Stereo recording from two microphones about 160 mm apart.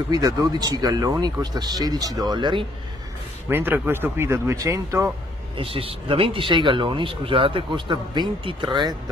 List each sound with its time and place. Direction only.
0.1 s speech: 25° right (ahead or behind)
3.4 s speech: 15° right (ahead or behind)
5.6 s speech: 35° right (ahead or behind)